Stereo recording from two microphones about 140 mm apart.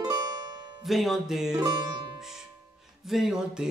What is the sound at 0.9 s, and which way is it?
Speech, centre (ahead or behind).